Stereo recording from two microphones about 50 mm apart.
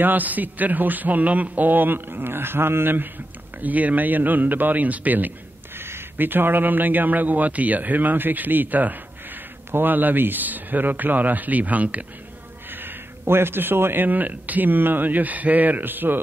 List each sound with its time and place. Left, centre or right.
0.0 s a man's voice: right
3.5 s a man's voice: right
5.8 s a man's voice: right
12.7 s a sound: right
14.0 s a man's voice: right